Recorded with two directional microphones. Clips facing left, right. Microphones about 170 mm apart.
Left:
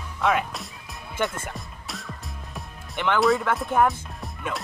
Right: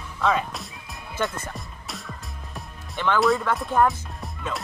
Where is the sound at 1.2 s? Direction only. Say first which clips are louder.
Even; 25° left (ahead or behind).